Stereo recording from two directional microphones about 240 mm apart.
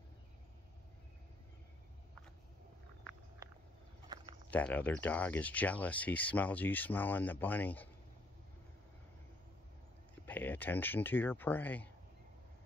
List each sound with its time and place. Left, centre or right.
3.4 s vehicle: centre
4.1 s a sound: centre
4.5 s speech: centre
10.2 s speech: centre